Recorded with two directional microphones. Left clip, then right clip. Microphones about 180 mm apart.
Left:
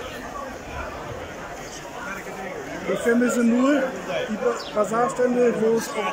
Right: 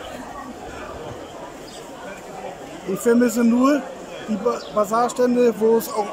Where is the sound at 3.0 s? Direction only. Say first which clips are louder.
Right 4 dB; 10° right (ahead or behind).